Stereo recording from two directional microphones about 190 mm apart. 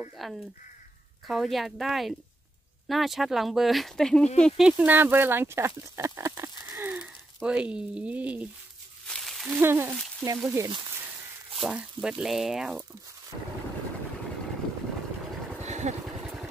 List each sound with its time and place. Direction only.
0.2 s speech: centre (ahead or behind)
9.0 s a sound: centre (ahead or behind)
9.6 s speech: 10° right (ahead or behind)
11.6 s speech: 5° right (ahead or behind)
15.6 s vehicle: 35° right (ahead or behind)